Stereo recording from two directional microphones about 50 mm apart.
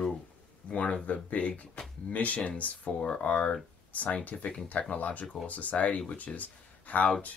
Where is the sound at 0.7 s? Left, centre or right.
Left.